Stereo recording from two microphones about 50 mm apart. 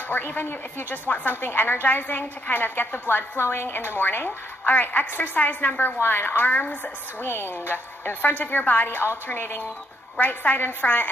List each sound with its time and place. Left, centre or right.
0.1 s a woman's voice: left
4.6 s a woman's voice: left
7.2 s a woman's voice: left
10.1 s a woman's voice: left